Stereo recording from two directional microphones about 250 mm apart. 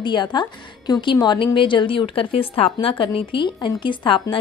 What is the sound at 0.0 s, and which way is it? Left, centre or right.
A woman's voice, centre.